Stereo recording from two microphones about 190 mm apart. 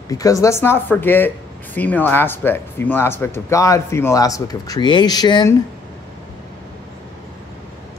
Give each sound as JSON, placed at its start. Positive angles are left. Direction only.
{"t": 0.1, "sound": "speech", "side_deg": 15}